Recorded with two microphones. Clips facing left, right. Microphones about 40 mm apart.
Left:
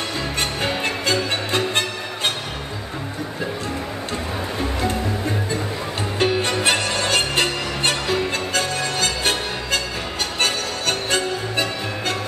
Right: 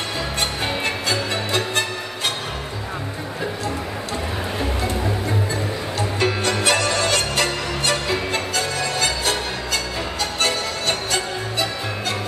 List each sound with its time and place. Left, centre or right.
1.0 s music: left
5.9 s music: left